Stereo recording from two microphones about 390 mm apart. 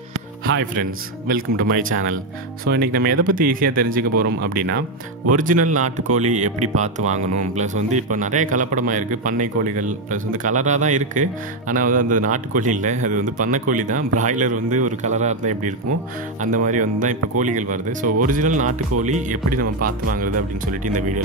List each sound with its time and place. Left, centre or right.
0.5 s speech: right
18.7 s speech: right
19.0 s speech: centre